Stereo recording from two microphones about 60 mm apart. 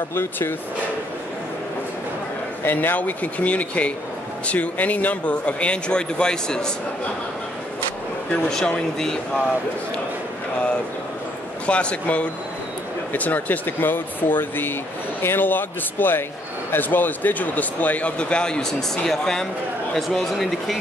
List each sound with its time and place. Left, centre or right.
0.1 s speech: left
2.6 s speech: left; by 6.7 s centre
8.5 s speech: centre
11.6 s speech: centre